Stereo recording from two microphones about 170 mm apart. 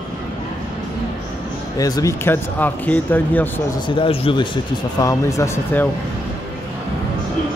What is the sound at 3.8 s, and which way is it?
Speech, 30° left (ahead or behind).